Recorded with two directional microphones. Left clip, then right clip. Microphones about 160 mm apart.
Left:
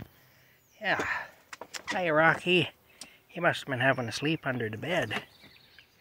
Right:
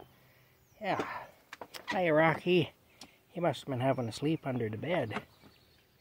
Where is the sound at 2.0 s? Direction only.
30° right (ahead or behind).